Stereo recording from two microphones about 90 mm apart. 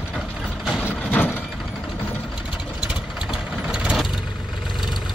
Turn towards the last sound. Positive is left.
turn(degrees=-10)  # may be behind; listen again after turning